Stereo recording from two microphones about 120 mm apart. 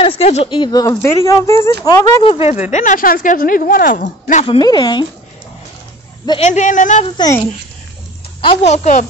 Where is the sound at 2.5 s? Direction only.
80° left.